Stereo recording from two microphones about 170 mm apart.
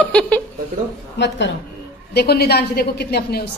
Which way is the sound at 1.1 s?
90° left.